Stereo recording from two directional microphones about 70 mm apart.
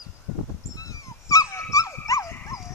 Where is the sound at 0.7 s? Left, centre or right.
Left.